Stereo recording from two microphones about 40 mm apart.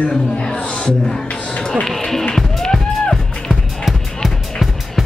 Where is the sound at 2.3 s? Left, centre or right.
Centre.